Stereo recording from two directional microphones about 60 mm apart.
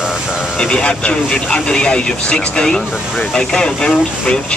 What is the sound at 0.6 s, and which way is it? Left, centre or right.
Speech, centre.